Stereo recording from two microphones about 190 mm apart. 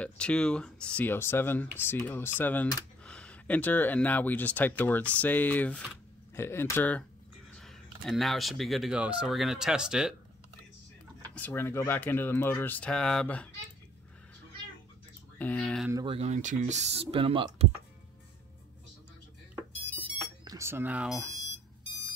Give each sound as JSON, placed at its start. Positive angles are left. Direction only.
{"t": 0.0, "sound": "speech", "side_deg": 5}
{"t": 11.2, "sound": "speech", "side_deg": 10}
{"t": 15.3, "sound": "speech", "side_deg": 10}
{"t": 16.1, "sound": "speech", "side_deg": -35}
{"t": 20.4, "sound": "speech", "side_deg": -15}